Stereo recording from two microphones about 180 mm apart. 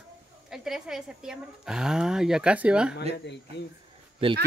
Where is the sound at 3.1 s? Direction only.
75° left (ahead or behind).